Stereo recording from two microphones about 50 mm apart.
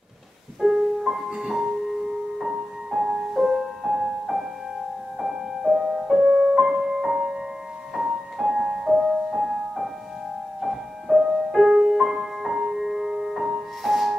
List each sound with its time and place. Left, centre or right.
0.6 s music: centre
6.5 s music: centre